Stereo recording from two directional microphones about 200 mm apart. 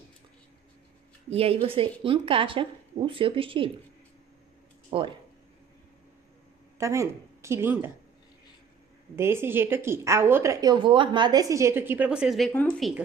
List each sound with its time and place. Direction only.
1.3 s speech: 30° right (ahead or behind)
4.9 s speech: 25° right (ahead or behind)
6.8 s speech: 15° right (ahead or behind)
9.1 s a woman's voice: 10° right (ahead or behind); by 12.9 s 5° left (ahead or behind)